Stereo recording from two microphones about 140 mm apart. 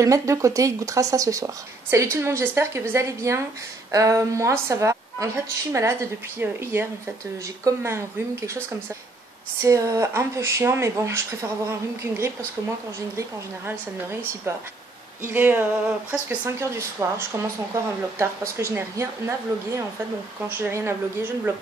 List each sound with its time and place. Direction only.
0.0 s a woman's voice: 20° right (ahead or behind)
15.2 s a woman's voice: 15° right (ahead or behind)